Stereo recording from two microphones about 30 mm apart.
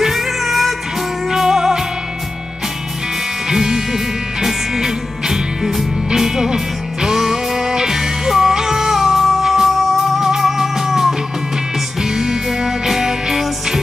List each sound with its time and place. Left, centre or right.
0.0 s music: centre
3.4 s music: centre